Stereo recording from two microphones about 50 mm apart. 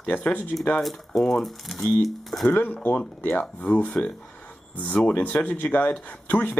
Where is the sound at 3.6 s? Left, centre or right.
Left.